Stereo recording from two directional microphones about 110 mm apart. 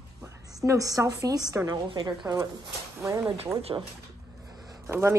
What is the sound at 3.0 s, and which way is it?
Speech, 30° right (ahead or behind).